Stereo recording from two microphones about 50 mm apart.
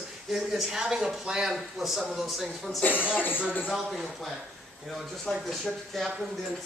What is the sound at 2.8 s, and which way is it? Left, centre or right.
Speech, left.